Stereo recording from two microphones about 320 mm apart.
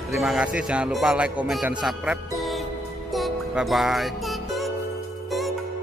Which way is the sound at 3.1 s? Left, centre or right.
Centre.